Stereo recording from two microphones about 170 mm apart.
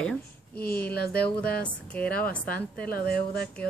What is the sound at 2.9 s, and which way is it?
Speech, 65° left (ahead or behind).